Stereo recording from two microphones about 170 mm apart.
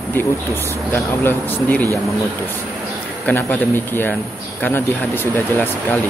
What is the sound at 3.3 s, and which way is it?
Speech, 10° left (ahead or behind).